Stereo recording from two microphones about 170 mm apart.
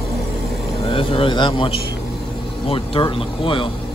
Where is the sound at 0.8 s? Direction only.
30° left (ahead or behind).